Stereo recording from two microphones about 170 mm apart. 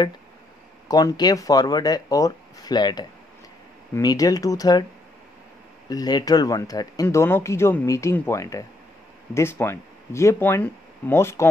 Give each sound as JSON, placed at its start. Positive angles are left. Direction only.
{"t": 0.8, "sound": "speech", "side_deg": 20}
{"t": 5.9, "sound": "speech", "side_deg": 25}